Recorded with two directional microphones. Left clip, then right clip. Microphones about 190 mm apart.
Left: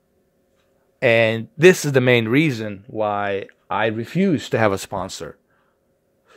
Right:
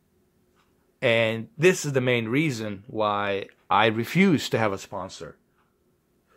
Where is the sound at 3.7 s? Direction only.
5° left (ahead or behind).